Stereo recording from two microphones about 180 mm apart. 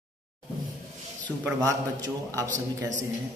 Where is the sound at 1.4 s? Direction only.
15° right (ahead or behind).